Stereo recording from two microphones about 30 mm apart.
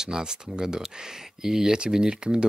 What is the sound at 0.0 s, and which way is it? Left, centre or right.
Speech, right.